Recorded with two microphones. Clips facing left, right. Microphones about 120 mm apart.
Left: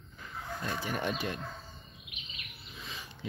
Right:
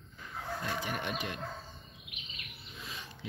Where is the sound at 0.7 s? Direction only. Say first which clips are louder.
Left 2 dB; 35° left (ahead or behind).